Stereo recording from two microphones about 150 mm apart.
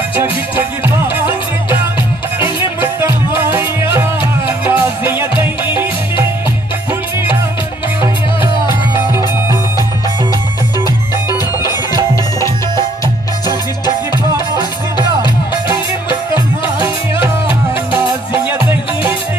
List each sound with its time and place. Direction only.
0.2 s music: 15° right (ahead or behind)
3.0 s music: 15° right (ahead or behind)
11.2 s music: 25° left (ahead or behind)
13.8 s music: 30° left (ahead or behind)
18.4 s music: 10° right (ahead or behind)